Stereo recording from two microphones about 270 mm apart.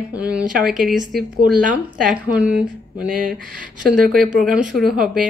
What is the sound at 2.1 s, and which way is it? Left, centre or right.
Speech, centre.